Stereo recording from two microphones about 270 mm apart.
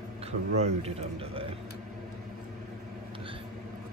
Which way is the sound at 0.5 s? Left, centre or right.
Right.